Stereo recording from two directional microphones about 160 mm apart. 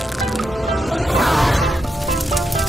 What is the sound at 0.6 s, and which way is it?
Music, centre (ahead or behind).